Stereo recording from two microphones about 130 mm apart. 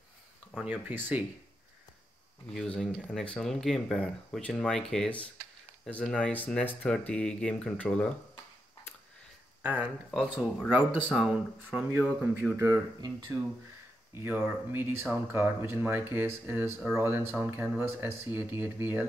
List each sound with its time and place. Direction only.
0.6 s speech: 10° right (ahead or behind)
2.5 s speech: 5° left (ahead or behind)
9.6 s speech: 10° right (ahead or behind)
14.1 s speech: 15° right (ahead or behind)